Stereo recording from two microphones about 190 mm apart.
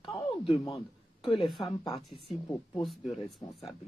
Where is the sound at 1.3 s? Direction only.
Centre (ahead or behind).